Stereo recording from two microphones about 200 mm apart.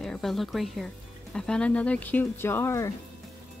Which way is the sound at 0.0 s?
Centre (ahead or behind).